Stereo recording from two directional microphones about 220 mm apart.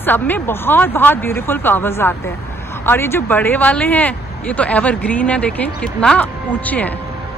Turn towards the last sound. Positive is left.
turn(degrees=5)  # may be behind; listen again after turning